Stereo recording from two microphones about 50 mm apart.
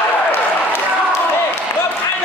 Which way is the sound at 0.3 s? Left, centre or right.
Left.